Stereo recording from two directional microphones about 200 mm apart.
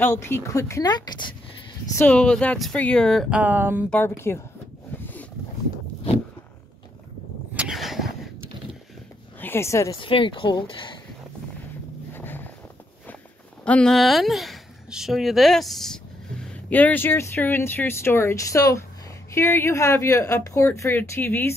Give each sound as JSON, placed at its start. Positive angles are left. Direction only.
{"t": 0.0, "sound": "speech", "side_deg": 10}
{"t": 2.0, "sound": "speech", "side_deg": 5}
{"t": 3.9, "sound": "speech", "side_deg": 10}
{"t": 7.5, "sound": "a sound", "side_deg": -5}
{"t": 9.4, "sound": "speech", "side_deg": 10}
{"t": 12.1, "sound": "a sound", "side_deg": 10}
{"t": 13.7, "sound": "a woman's voice", "side_deg": 5}